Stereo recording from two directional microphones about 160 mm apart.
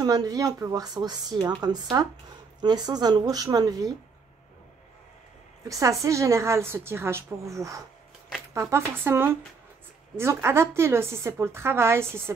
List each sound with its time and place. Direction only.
0.0 s a woman's voice: 25° right (ahead or behind)
5.7 s a woman's voice: 20° right (ahead or behind)